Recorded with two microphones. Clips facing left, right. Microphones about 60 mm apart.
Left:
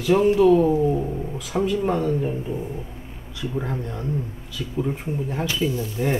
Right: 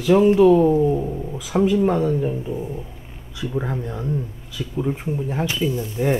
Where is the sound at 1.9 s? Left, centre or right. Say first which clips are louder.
Right 2 dB; centre.